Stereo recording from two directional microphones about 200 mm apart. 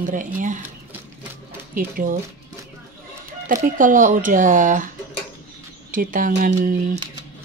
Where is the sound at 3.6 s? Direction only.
40° right (ahead or behind).